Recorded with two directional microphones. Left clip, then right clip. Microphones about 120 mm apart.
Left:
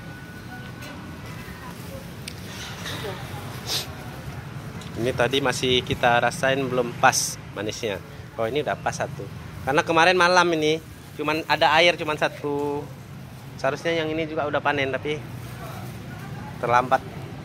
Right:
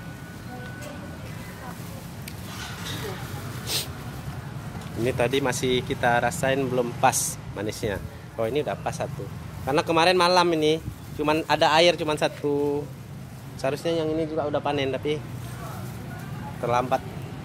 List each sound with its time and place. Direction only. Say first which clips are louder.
3.7 s a sound: left 1 dB; 35° right (ahead or behind)
5.0 s speech: left 2 dB; 15° right (ahead or behind)
6.3 s speech: left 2 dB; 20° right (ahead or behind)
7.6 s speech: left 1 dB; 25° right (ahead or behind)
8.5 s speech: left 2 dB; 5° right (ahead or behind); by 10.8 s 25° right (ahead or behind)
11.1 s speech: even; 65° right (ahead or behind)
13.6 s speech: left 2 dB; 40° right (ahead or behind)
14.0 s speech: even; 10° left (ahead or behind)
14.7 s speech: left 2 dB; 45° right (ahead or behind)
16.6 s speech: left 4 dB; 10° right (ahead or behind)